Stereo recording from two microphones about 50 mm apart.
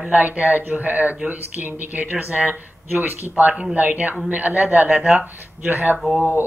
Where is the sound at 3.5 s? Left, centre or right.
Centre.